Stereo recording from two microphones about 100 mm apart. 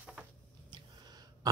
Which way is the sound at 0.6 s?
45° right (ahead or behind).